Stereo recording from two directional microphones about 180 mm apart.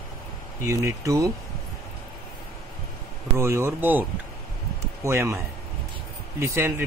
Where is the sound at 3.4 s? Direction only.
15° right (ahead or behind).